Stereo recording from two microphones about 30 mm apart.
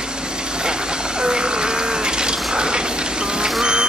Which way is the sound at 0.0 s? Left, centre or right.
Right.